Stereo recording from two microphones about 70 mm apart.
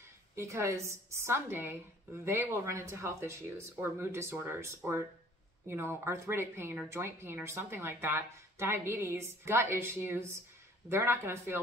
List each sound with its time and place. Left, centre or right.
0.4 s a woman's voice: right
6.0 s a woman's voice: right